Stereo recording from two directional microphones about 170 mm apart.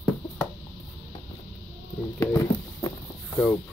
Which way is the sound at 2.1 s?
20° left (ahead or behind).